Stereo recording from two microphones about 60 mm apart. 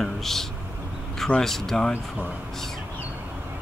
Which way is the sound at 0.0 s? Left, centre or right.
Centre.